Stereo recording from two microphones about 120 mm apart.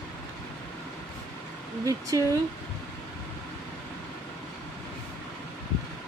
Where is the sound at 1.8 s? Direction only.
25° right (ahead or behind).